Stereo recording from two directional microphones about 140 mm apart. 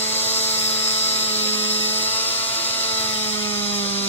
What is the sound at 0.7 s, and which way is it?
Helicopter, 50° left (ahead or behind).